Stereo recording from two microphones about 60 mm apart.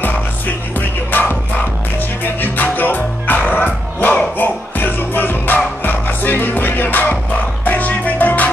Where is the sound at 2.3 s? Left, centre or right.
Left.